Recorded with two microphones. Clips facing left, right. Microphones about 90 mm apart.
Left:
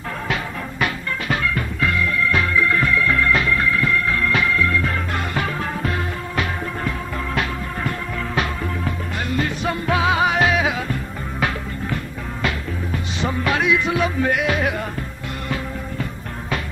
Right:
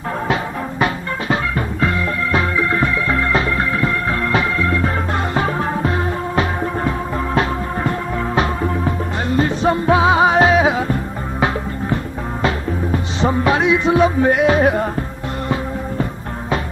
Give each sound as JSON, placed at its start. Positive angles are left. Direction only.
{"t": 0.3, "sound": "music", "side_deg": -30}
{"t": 8.4, "sound": "music", "side_deg": -30}